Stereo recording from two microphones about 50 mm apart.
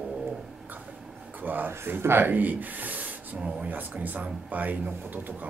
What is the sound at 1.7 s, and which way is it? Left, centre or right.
A man's voice, right.